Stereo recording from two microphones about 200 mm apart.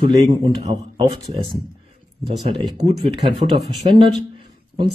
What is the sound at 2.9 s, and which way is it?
Speech, 30° right (ahead or behind).